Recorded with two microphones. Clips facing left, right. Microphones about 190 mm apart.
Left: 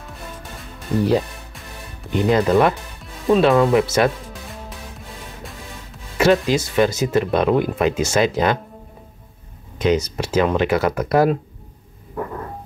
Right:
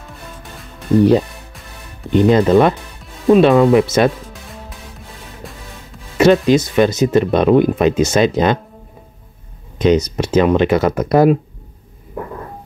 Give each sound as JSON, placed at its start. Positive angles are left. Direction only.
{"t": 0.0, "sound": "music", "side_deg": 0}
{"t": 2.1, "sound": "speech", "side_deg": -20}
{"t": 4.3, "sound": "music", "side_deg": 0}
{"t": 6.1, "sound": "speech", "side_deg": -20}
{"t": 9.8, "sound": "speech", "side_deg": -20}